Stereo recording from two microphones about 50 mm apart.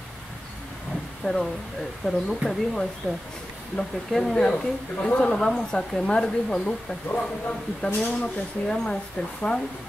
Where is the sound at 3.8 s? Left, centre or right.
Centre.